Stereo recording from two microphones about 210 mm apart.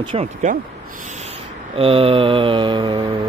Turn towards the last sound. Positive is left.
turn(degrees=-25)  # may be behind; listen again after turning